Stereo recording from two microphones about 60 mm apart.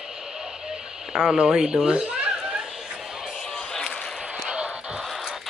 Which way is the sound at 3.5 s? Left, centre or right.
Centre.